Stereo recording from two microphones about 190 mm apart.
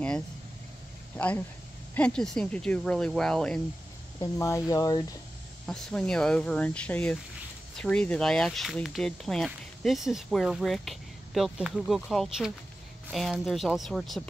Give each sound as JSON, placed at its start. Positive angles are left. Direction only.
{"t": 1.1, "sound": "speech", "side_deg": 5}
{"t": 4.2, "sound": "speech", "side_deg": 15}
{"t": 5.7, "sound": "speech", "side_deg": 5}